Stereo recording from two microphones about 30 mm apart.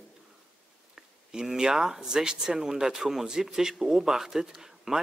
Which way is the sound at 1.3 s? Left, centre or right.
Right.